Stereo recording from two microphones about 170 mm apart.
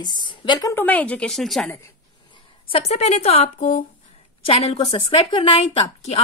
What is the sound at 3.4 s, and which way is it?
Speech, 50° left (ahead or behind).